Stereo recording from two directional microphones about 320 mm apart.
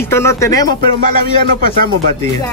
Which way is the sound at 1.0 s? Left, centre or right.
Right.